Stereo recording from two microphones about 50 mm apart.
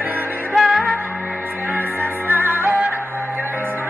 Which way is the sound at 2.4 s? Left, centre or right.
Right.